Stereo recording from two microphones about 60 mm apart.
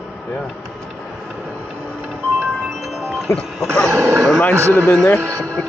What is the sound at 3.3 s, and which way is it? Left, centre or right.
Speech, left.